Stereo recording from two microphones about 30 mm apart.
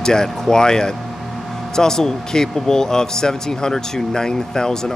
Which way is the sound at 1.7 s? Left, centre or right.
Centre.